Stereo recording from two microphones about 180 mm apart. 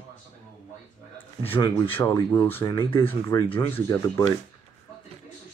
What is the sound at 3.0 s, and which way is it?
Speech, 10° left (ahead or behind).